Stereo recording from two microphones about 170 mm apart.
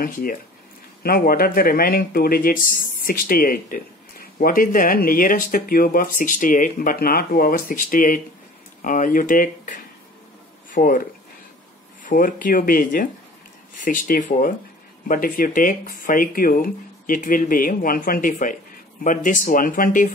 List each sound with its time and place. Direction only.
0.0 s speech: 55° left (ahead or behind)